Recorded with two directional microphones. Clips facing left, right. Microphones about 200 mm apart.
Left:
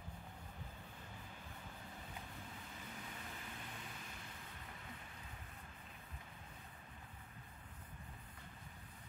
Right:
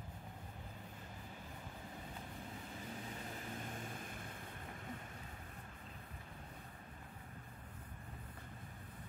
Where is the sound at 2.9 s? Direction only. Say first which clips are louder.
Right 5 dB; 35° right (ahead or behind).